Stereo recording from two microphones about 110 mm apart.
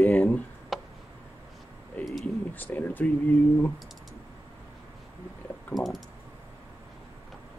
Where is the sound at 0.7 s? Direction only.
Centre (ahead or behind).